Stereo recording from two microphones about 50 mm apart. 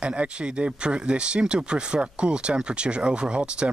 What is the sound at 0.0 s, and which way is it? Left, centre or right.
Speech, right.